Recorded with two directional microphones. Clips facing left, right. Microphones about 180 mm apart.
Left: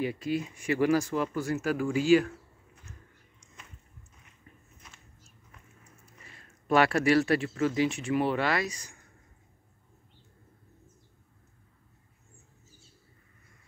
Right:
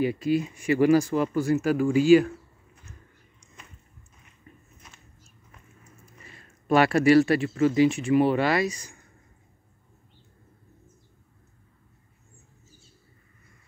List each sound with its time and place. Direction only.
0.0 s speech: 5° right (ahead or behind)
4.5 s biting: 10° right (ahead or behind)
6.7 s speech: 5° right (ahead or behind)